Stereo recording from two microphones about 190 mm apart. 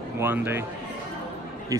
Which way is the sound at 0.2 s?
10° right (ahead or behind).